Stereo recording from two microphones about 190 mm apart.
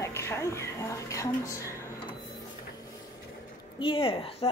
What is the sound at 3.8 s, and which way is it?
Speech, 25° left (ahead or behind).